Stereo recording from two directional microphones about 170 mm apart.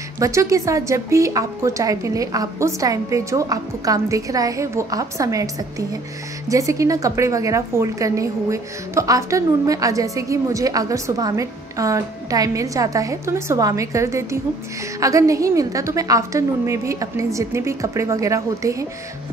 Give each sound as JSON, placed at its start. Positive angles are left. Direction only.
{"t": 0.2, "sound": "a woman's voice", "side_deg": -20}